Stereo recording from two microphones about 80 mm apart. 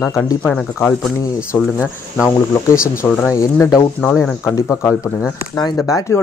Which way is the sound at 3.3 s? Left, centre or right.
Left.